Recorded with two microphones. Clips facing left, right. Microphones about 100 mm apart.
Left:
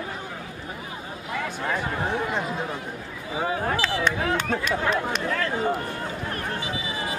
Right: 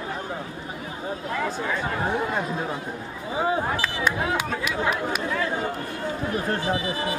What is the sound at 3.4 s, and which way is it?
Speech, 25° right (ahead or behind).